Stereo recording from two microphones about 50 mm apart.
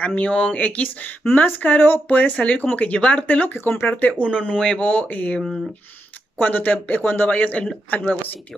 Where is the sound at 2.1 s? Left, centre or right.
Left.